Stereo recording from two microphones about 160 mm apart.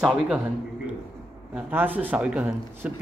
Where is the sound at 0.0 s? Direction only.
5° right (ahead or behind).